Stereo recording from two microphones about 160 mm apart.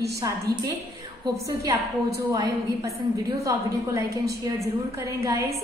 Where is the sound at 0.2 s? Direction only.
20° right (ahead or behind).